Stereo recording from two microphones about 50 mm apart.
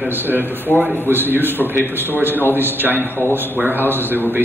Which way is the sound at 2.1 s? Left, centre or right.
Right.